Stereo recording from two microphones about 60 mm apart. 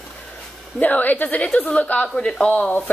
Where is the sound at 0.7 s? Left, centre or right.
Left.